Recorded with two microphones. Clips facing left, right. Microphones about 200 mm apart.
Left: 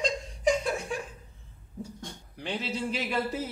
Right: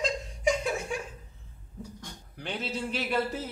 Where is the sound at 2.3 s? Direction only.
Centre (ahead or behind).